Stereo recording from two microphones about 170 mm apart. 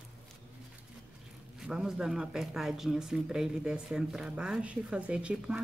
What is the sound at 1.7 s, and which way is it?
Speech, 5° right (ahead or behind).